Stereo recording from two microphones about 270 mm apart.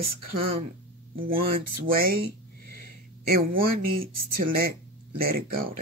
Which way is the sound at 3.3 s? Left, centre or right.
Right.